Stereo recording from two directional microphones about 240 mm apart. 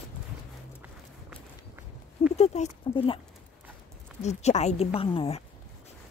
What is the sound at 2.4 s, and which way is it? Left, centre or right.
Speech, left.